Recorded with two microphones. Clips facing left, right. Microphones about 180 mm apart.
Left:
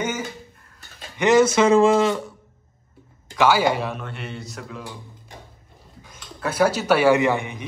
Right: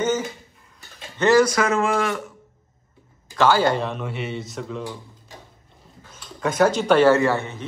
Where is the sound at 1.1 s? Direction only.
20° left (ahead or behind).